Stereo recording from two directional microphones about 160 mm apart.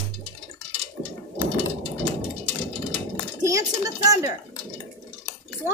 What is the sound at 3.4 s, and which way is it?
Speech, 20° right (ahead or behind).